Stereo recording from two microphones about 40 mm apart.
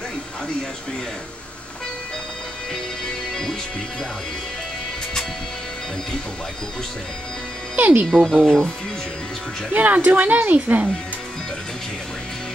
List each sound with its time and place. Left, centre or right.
2.7 s music: centre
7.7 s music: right
8.1 s speech: centre
9.7 s a woman's voice: right